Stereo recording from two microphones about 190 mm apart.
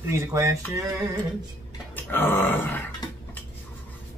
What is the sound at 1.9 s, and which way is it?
Grunt, 10° left (ahead or behind).